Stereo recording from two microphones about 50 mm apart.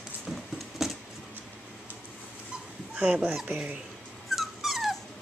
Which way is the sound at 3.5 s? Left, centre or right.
Right.